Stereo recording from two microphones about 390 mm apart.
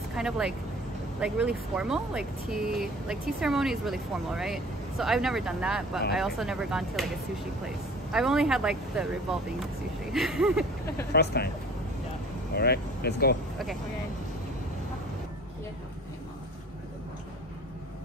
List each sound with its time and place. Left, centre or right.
0.1 s speech: centre
11.1 s speech: left
12.5 s speech: left